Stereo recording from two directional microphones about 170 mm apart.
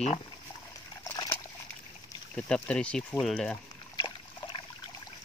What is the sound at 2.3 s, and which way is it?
Speech, 5° left (ahead or behind).